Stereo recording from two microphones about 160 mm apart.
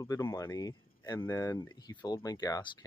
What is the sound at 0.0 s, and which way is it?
Speech, 20° left (ahead or behind).